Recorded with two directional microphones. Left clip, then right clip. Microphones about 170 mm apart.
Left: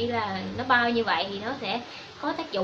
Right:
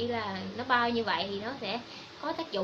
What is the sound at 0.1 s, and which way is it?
A woman's voice, 10° right (ahead or behind).